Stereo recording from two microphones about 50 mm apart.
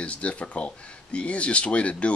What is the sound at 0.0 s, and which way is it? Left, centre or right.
Speech, left.